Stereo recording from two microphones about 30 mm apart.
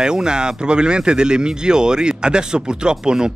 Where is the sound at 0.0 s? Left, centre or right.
Right.